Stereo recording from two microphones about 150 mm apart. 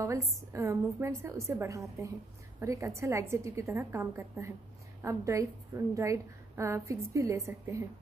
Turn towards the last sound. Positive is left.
turn(degrees=-20)  # may be behind; listen again after turning